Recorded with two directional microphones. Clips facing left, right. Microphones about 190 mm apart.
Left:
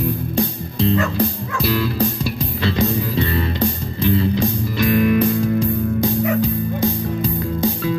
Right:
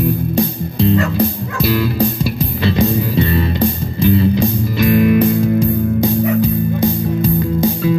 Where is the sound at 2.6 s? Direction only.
15° right (ahead or behind).